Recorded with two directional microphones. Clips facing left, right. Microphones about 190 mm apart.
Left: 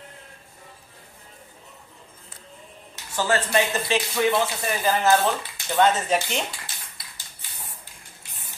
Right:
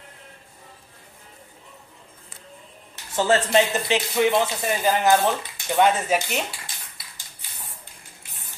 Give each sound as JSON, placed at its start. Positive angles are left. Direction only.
{"t": 3.2, "sound": "speech", "side_deg": -25}